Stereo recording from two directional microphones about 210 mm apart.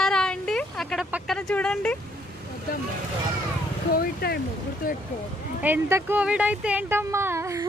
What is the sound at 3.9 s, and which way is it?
Speech, 45° left (ahead or behind).